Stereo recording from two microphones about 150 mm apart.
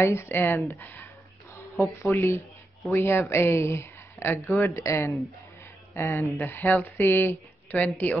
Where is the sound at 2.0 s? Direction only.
15° left (ahead or behind).